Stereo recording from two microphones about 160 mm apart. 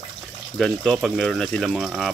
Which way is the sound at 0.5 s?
Centre (ahead or behind).